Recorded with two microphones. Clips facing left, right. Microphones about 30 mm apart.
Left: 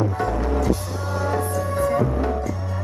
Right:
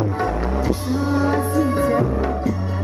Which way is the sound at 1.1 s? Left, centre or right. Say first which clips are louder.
Right 3 dB; right.